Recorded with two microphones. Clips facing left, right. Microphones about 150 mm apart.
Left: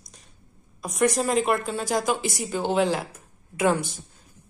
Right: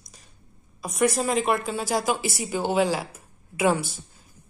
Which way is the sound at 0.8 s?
Centre (ahead or behind).